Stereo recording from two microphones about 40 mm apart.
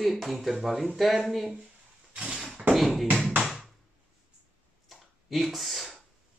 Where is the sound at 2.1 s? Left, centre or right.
Right.